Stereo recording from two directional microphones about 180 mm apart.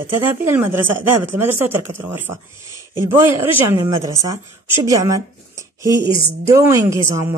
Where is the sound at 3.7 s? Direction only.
20° right (ahead or behind).